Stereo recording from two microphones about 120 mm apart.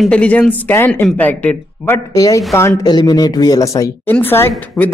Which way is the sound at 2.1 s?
30° left (ahead or behind).